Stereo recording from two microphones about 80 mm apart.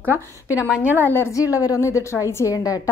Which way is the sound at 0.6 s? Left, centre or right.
Centre.